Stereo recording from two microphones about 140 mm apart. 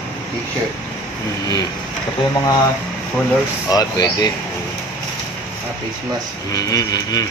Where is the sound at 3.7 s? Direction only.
25° left (ahead or behind).